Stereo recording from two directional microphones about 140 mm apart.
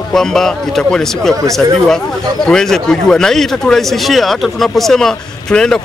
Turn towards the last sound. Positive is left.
turn(degrees=5)  # may be behind; listen again after turning